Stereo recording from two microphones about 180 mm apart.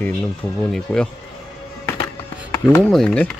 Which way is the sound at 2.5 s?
15° left (ahead or behind).